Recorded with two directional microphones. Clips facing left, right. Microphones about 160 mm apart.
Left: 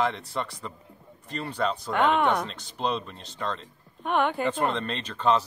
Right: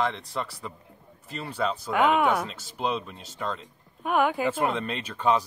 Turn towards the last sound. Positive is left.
turn(degrees=-10)  # may be behind; listen again after turning